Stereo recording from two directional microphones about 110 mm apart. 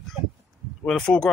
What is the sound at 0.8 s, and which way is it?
Speech, 5° left (ahead or behind).